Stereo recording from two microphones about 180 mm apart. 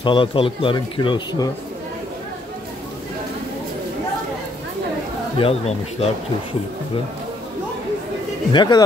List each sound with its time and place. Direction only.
0.0 s speech: 25° left (ahead or behind)
5.4 s speech: 35° left (ahead or behind)
8.5 s speech: 20° left (ahead or behind)